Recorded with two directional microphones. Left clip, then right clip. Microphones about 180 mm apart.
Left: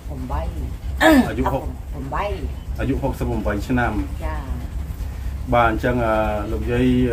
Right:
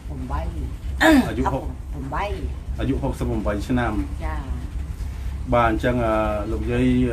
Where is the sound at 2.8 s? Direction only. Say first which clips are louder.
Left 2 dB; 15° right (ahead or behind).